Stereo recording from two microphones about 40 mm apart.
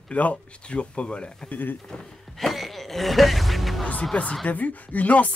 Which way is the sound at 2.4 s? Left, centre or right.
Centre.